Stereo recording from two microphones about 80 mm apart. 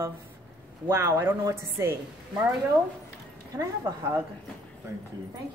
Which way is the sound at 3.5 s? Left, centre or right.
Right.